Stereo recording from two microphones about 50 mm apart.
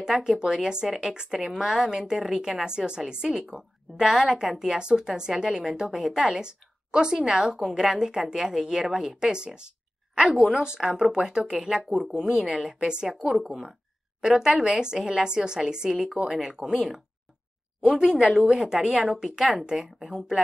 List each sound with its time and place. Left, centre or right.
0.0 s a woman's voice: centre
10.3 s a woman's voice: centre
11.7 s a woman's voice: centre
12.7 s a woman's voice: centre
13.2 s a woman's voice: centre
17.9 s a woman's voice: centre